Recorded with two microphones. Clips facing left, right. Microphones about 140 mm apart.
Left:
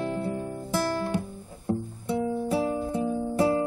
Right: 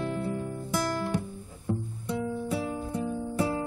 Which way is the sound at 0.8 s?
30° left (ahead or behind).